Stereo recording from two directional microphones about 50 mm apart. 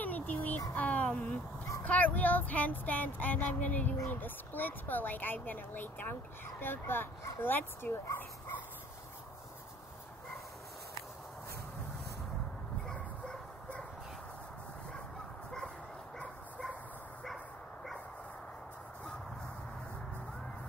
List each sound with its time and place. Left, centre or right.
0.0 s child singing: left
0.7 s a sound: left
1.8 s speech: left